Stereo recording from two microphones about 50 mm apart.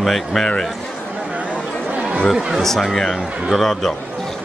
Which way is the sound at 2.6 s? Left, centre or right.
Centre.